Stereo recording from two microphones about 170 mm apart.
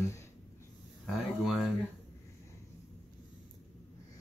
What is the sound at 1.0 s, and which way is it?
Speech, centre (ahead or behind).